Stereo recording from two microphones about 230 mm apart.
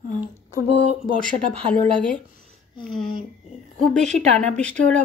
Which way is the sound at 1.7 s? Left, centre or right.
Centre.